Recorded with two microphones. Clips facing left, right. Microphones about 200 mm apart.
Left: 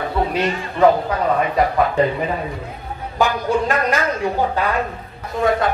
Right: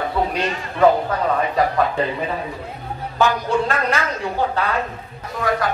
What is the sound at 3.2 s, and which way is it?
A man's voice, 15° left (ahead or behind).